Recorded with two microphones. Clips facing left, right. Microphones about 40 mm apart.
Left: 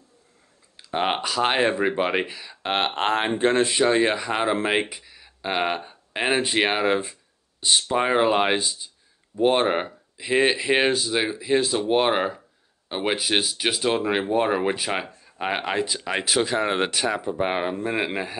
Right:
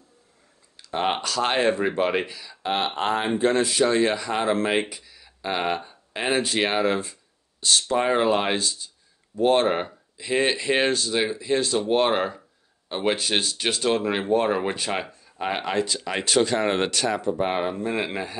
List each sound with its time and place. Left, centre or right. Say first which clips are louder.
0.7 s speech: left 1 dB; centre
2.6 s speech: left 1 dB; left; by 18.3 s centre